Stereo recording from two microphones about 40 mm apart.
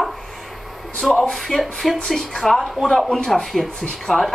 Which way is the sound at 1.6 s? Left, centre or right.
Centre.